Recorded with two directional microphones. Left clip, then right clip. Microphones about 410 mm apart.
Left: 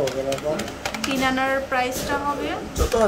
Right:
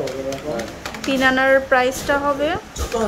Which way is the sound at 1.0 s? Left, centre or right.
Centre.